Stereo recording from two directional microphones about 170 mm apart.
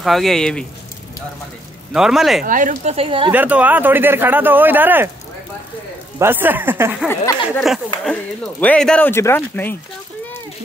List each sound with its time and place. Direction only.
0.0 s speech: centre (ahead or behind)
2.0 s speech: centre (ahead or behind)
2.4 s speech: 50° right (ahead or behind); by 3.3 s 35° right (ahead or behind)
3.3 s speech: 10° right (ahead or behind)
6.1 s speech: 10° right (ahead or behind)
7.5 s speech: centre (ahead or behind)